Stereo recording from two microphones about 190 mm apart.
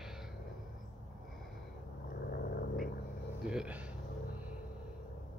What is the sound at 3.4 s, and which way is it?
Speech, 5° right (ahead or behind).